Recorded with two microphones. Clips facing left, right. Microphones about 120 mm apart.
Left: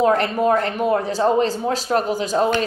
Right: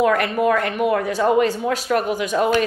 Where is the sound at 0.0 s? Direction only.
30° left (ahead or behind).